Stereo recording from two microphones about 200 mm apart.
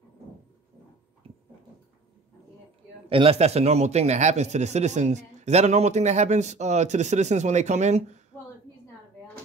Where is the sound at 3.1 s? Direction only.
30° right (ahead or behind).